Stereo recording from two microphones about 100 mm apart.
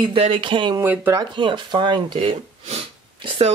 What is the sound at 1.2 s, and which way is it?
Speech, 55° right (ahead or behind).